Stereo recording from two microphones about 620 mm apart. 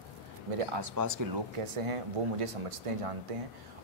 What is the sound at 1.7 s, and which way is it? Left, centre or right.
Speech, right.